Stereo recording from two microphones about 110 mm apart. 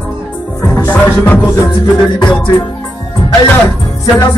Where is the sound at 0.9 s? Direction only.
15° left (ahead or behind).